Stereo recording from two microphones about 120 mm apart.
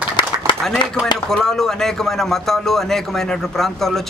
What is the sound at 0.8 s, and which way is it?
Speech, 40° left (ahead or behind).